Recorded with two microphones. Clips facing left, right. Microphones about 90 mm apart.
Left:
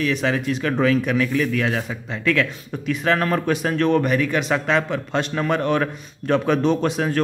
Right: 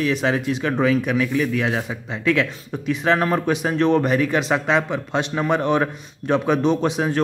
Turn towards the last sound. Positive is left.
turn(degrees=-20)  # may be behind; listen again after turning